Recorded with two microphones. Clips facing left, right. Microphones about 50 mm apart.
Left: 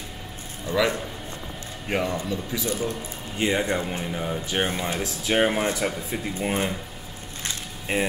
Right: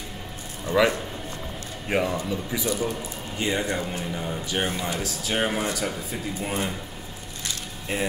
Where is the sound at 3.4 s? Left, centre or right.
Centre.